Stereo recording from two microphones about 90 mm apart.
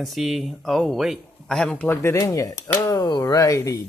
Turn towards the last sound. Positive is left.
turn(degrees=40)  # may be behind; listen again after turning